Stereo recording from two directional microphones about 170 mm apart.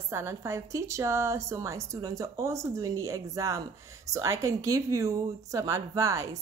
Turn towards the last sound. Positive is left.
turn(degrees=-20)  # may be behind; listen again after turning